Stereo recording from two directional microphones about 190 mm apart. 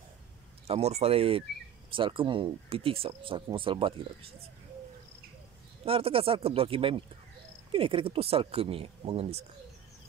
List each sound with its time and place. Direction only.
0.7 s speech: 35° right (ahead or behind)
5.9 s speech: 30° right (ahead or behind)